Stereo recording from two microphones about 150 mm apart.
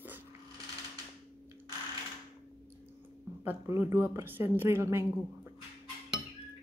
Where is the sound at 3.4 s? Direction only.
15° right (ahead or behind).